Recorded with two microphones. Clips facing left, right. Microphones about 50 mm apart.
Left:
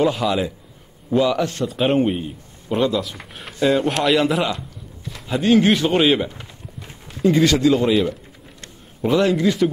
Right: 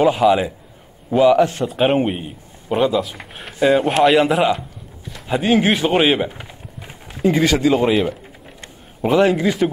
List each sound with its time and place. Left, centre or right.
0.0 s a man's voice: centre
3.5 s a man's voice: centre